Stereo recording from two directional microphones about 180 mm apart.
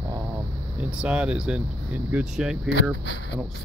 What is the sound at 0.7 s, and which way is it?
Speech, 5° right (ahead or behind).